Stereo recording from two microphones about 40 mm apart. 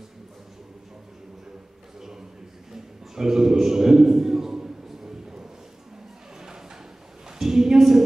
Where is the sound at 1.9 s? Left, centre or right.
Centre.